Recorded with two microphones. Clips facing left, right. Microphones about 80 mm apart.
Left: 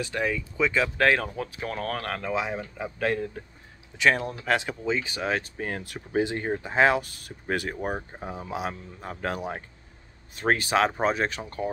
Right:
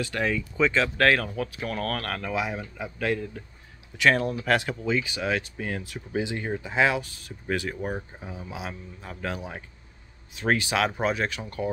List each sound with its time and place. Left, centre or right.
0.0 s speech: centre
0.3 s speech: centre
0.9 s speech: centre
3.9 s speech: centre
5.0 s speech: left